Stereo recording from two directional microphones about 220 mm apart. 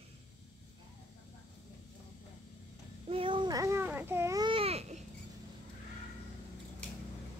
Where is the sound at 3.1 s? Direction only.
25° right (ahead or behind).